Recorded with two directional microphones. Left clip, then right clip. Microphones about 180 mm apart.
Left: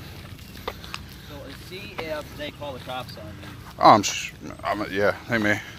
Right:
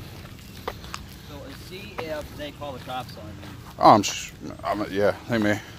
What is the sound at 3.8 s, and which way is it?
Speech, 25° right (ahead or behind).